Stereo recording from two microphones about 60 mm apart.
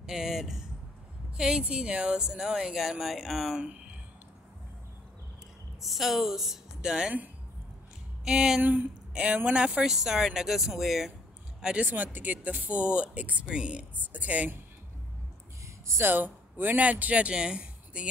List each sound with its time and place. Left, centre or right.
0.0 s speech: centre
5.8 s speech: centre
8.3 s speech: centre
8.6 s speech: right; by 11.1 s centre
11.6 s speech: right
15.6 s a sound: right
16.1 s speech: right; by 18.0 s centre